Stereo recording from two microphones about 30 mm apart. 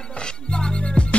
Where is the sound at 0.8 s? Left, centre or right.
Left.